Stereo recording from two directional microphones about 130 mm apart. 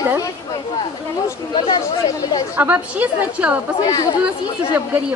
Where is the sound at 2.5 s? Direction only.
10° right (ahead or behind).